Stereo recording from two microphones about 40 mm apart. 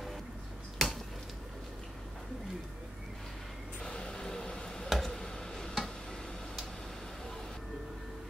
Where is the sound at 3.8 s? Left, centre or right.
Centre.